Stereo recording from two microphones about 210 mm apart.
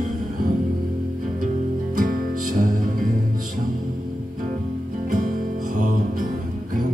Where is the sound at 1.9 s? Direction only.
40° right (ahead or behind).